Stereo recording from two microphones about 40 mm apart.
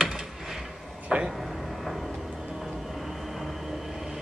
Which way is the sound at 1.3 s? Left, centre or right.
Centre.